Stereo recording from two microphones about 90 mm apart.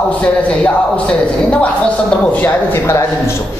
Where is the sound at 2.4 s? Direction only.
25° left (ahead or behind).